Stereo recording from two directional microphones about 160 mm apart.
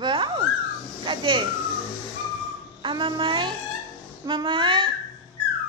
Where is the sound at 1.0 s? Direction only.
30° right (ahead or behind).